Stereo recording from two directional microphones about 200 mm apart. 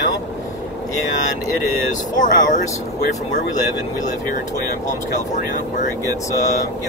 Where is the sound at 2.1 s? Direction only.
40° left (ahead or behind).